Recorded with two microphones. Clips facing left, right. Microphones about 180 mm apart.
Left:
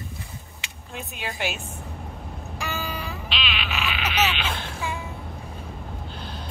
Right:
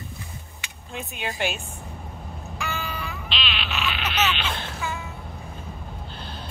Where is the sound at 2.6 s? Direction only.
35° left (ahead or behind).